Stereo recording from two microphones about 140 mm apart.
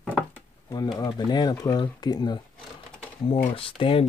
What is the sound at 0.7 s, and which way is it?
Speech, 30° left (ahead or behind).